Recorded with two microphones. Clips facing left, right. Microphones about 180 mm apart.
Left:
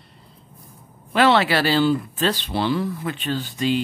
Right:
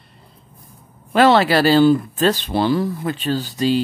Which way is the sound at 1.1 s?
40° right (ahead or behind).